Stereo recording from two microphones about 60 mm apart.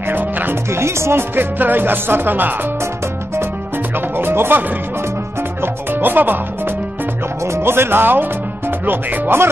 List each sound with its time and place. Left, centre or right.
0.1 s speech: right
0.7 s speech: right
4.2 s music: right
7.5 s speech: right